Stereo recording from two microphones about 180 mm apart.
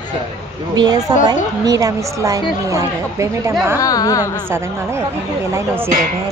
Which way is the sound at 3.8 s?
20° left (ahead or behind).